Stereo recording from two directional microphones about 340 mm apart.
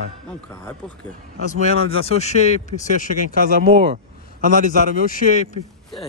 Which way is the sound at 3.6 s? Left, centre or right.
Centre.